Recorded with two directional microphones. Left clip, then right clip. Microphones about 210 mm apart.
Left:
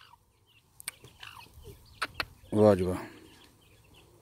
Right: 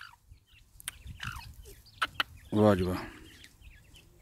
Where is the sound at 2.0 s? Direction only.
15° right (ahead or behind).